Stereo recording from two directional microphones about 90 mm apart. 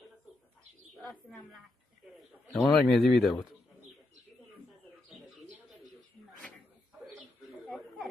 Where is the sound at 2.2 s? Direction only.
Centre (ahead or behind).